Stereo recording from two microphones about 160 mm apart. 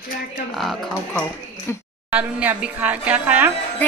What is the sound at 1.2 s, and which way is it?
Speech, 15° left (ahead or behind).